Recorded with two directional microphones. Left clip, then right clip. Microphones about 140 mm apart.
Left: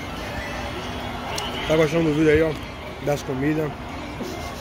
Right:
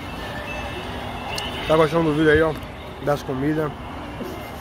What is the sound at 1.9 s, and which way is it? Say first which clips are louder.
Speech: right 1 dB; 40° left (ahead or behind).